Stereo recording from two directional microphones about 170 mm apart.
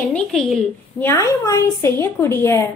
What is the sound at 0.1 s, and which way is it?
Speech, centre (ahead or behind).